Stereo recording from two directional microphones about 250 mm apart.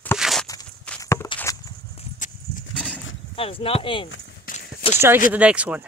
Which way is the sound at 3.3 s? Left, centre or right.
Left.